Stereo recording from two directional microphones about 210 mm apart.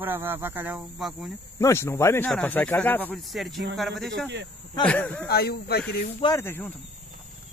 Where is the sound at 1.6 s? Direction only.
15° left (ahead or behind).